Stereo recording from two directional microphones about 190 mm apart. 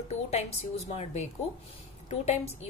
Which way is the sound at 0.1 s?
35° left (ahead or behind).